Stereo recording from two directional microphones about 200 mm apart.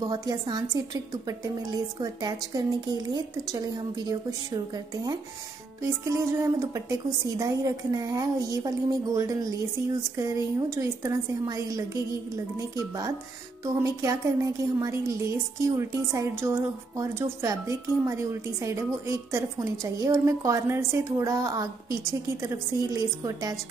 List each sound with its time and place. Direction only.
0.0 s a woman's voice: 20° right (ahead or behind)
5.8 s a woman's voice: 15° right (ahead or behind)